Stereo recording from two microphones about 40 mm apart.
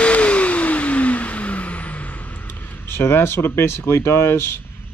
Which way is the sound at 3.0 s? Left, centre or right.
Left.